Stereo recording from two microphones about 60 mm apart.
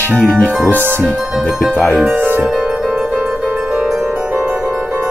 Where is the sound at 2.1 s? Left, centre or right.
Right.